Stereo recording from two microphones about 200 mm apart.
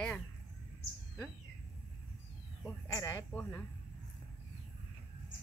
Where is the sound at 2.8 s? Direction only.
15° left (ahead or behind).